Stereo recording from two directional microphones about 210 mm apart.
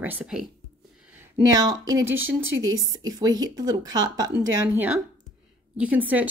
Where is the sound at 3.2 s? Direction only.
20° right (ahead or behind).